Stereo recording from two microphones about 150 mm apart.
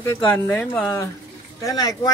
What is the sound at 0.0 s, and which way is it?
Speech, 10° left (ahead or behind).